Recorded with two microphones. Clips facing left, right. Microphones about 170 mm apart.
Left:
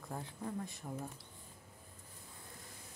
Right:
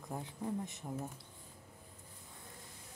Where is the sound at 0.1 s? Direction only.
15° right (ahead or behind).